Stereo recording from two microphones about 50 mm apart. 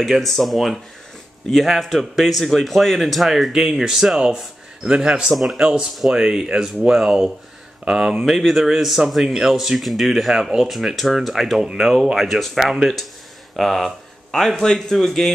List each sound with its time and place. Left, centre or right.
0.0 s a man's voice: centre
5.3 s a man's voice: centre
5.6 s a man's voice: centre